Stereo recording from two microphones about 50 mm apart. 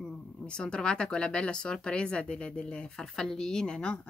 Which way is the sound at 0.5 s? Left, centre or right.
Centre.